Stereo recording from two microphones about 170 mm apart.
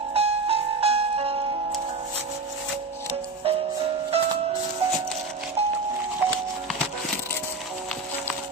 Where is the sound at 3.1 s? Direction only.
35° right (ahead or behind).